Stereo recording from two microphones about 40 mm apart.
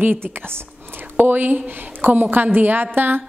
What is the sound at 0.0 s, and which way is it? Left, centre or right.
Speech, right.